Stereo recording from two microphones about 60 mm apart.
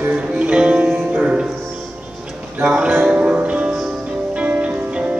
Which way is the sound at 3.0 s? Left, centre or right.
Right.